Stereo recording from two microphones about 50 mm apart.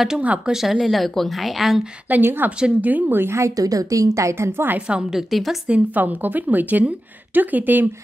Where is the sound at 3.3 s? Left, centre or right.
Right.